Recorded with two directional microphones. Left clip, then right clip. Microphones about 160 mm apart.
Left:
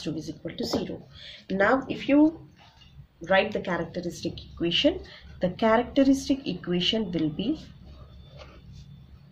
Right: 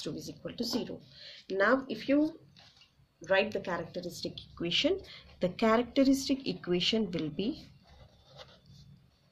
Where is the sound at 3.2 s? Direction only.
30° right (ahead or behind); by 7.5 s 50° right (ahead or behind).